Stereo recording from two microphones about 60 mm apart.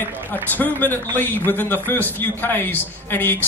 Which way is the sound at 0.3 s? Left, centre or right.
Left.